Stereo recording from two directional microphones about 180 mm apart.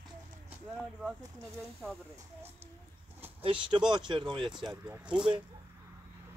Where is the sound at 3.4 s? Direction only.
30° right (ahead or behind).